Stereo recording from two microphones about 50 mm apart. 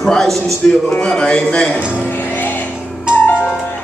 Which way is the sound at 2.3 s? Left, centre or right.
Left.